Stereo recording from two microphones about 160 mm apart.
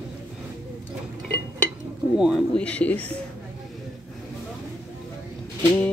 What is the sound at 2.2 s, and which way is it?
Speech, 5° right (ahead or behind).